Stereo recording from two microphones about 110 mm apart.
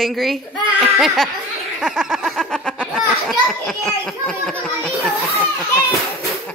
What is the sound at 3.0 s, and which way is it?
A woman's voice, centre (ahead or behind).